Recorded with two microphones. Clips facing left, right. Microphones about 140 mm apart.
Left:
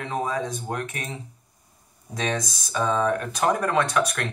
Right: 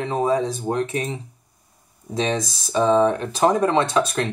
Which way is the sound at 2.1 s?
30° right (ahead or behind).